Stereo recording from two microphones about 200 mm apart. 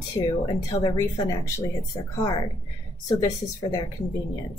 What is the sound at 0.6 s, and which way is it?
Speech, 20° left (ahead or behind).